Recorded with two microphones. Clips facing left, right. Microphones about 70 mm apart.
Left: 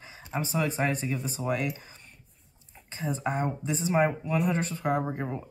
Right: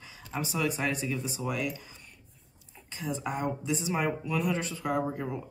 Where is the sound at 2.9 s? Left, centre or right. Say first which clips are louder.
Left 3 dB; left.